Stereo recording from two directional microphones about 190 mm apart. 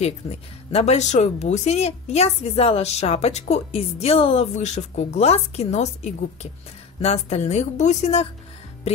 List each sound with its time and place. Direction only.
0.0 s speech: 35° left (ahead or behind)
8.9 s music: 35° left (ahead or behind)